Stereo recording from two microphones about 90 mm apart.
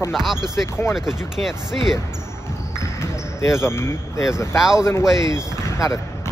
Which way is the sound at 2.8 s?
35° left (ahead or behind).